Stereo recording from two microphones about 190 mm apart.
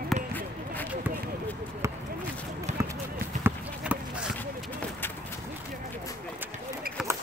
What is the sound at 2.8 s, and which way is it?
Basketball bounce, 15° right (ahead or behind).